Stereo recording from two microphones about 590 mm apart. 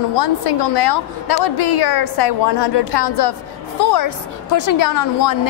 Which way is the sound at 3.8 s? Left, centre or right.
Left.